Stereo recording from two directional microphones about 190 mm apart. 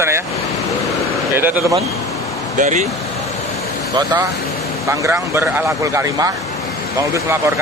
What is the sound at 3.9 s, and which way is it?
Speech, 15° right (ahead or behind).